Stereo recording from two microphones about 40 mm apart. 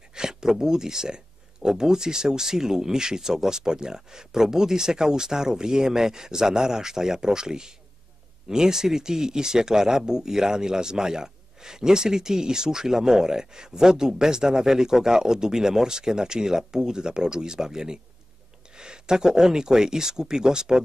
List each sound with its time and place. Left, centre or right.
0.1 s speech: centre